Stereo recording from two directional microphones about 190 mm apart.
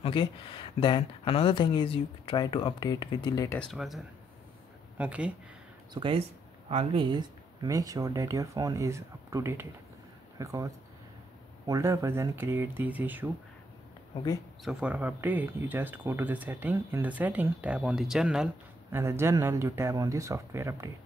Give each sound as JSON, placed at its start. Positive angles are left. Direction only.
{"t": 0.0, "sound": "speech", "side_deg": 25}
{"t": 3.5, "sound": "speech", "side_deg": 0}
{"t": 5.9, "sound": "speech", "side_deg": -25}
{"t": 14.6, "sound": "speech", "side_deg": -5}